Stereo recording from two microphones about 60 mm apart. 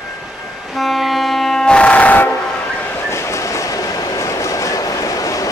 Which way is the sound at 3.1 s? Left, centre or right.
Left.